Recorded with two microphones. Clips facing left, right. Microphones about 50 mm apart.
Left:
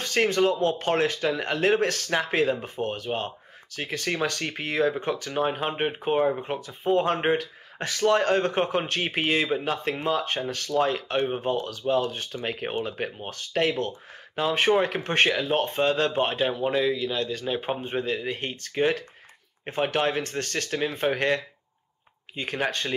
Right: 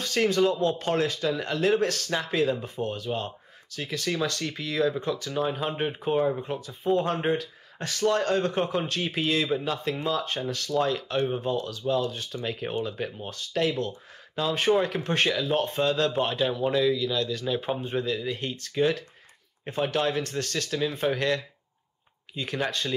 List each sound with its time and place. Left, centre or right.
0.0 s speech: left